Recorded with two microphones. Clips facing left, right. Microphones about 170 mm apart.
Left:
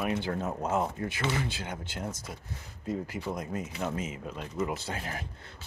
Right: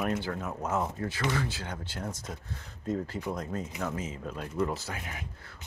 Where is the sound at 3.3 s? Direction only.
15° left (ahead or behind).